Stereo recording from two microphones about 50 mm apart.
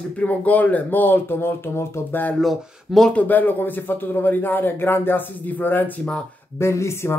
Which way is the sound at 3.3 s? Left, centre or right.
Left.